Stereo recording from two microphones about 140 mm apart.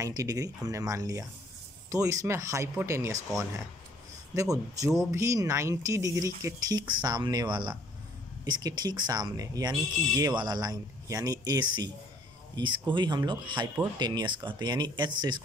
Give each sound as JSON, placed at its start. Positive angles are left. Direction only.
{"t": 0.0, "sound": "speech", "side_deg": -25}
{"t": 4.4, "sound": "speech", "side_deg": -25}